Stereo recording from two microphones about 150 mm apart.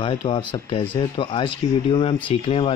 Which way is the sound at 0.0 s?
35° left (ahead or behind).